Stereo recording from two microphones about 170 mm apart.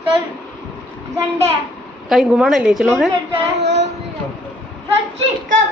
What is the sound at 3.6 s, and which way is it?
Child singing, 90° right.